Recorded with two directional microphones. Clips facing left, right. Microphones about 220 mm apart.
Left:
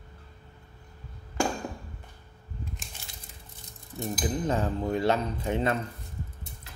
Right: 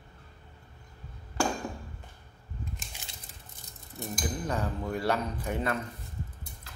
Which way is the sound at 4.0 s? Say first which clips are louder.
Left 5 dB; 20° left (ahead or behind).